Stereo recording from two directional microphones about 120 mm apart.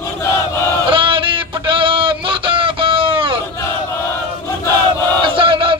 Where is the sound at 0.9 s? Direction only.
45° right (ahead or behind).